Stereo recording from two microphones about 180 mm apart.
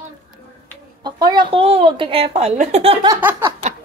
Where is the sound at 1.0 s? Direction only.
25° right (ahead or behind).